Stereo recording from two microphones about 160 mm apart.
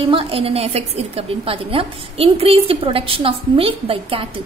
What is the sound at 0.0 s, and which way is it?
A woman's voice, 35° right (ahead or behind).